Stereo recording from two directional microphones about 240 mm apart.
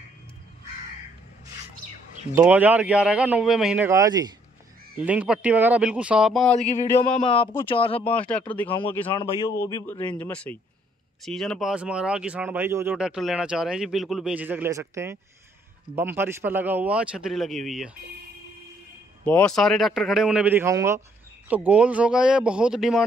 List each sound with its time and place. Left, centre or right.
2.3 s speech: centre
7.1 s speech: left
8.0 s a man's voice: centre
10.1 s speech: centre
19.2 s speech: centre